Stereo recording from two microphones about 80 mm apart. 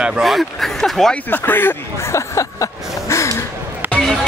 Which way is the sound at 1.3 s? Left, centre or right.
Left.